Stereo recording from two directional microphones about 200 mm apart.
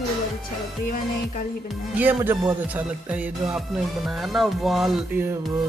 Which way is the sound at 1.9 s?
10° right (ahead or behind).